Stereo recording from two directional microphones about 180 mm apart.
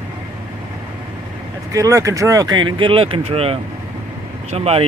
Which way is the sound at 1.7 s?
20° right (ahead or behind).